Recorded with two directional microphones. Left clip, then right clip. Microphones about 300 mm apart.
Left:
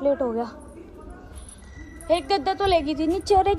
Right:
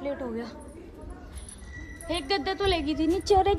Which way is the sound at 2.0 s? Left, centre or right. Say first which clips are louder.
Left 7 dB; centre.